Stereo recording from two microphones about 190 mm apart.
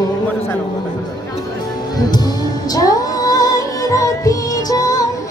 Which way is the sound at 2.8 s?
20° left (ahead or behind).